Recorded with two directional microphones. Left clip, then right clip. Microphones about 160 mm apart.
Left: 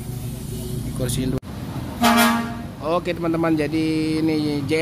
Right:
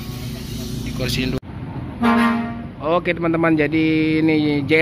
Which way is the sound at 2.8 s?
10° left (ahead or behind).